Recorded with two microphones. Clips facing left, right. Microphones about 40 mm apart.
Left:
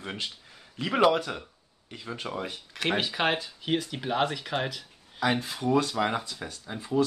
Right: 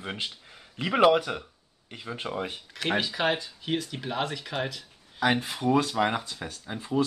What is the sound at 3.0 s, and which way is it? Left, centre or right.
Speech, centre.